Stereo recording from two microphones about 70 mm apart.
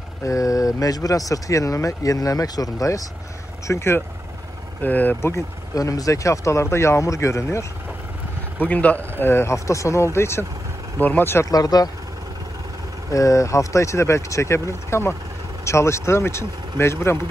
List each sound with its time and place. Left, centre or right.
0.2 s speech: left
3.6 s speech: left
4.8 s speech: left
5.8 s speech: left
8.5 s speech: left
9.2 s speech: left
11.0 s speech: left
11.4 s speech: left
13.1 s speech: left